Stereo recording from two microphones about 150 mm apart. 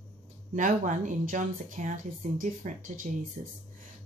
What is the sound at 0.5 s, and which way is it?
Speech, 55° right (ahead or behind).